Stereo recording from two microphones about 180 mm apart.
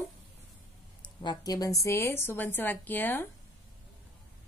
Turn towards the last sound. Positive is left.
turn(degrees=10)  # may be behind; listen again after turning